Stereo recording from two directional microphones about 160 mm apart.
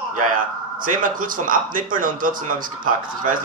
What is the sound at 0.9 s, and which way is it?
Speech, 60° right (ahead or behind).